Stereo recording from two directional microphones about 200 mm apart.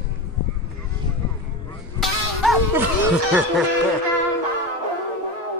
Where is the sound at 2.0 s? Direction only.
Centre (ahead or behind).